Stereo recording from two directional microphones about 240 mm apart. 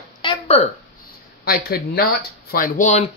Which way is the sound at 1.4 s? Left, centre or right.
Left.